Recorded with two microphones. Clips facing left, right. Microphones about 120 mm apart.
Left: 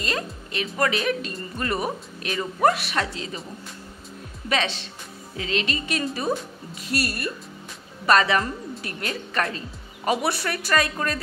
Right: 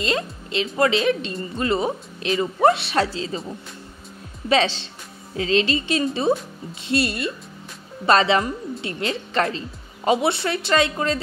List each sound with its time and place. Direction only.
0.0 s music: 25° right (ahead or behind)
0.7 s speech: 25° right (ahead or behind)
4.5 s speech: 30° right (ahead or behind)